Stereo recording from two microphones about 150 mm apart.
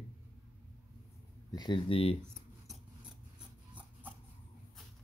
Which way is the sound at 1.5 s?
30° left (ahead or behind).